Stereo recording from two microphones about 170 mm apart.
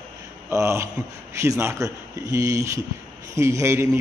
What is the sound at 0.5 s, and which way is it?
A man's voice, 15° right (ahead or behind).